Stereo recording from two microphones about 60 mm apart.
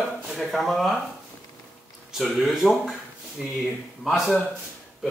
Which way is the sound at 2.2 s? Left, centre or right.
Centre.